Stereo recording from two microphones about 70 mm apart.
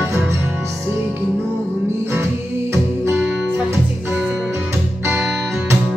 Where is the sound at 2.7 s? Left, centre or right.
Right.